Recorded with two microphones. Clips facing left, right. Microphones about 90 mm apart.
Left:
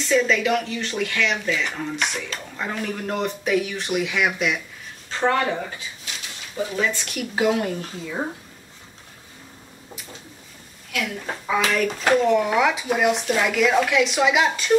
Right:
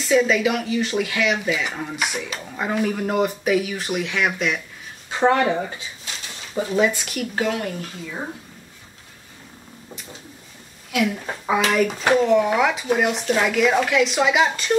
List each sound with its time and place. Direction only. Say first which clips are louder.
0.0 s speech: right 2 dB; 5° right (ahead or behind)
5.1 s speech: right 3 dB; 15° right (ahead or behind)
6.8 s speech: right 6 dB; 5° right (ahead or behind)
7.3 s speech: left 4 dB; 15° left (ahead or behind)
10.9 s speech: right 5 dB; 20° right (ahead or behind); by 14.8 s centre (ahead or behind)